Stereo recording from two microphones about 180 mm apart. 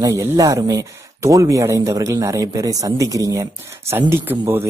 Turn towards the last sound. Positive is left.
turn(degrees=-10)  # may be behind; listen again after turning